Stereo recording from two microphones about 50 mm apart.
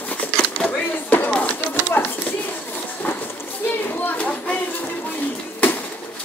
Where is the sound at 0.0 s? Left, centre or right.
Left.